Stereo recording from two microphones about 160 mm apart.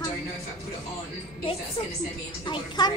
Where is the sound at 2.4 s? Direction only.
25° left (ahead or behind).